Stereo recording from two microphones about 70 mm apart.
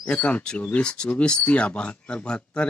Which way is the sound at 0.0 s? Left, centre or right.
Centre.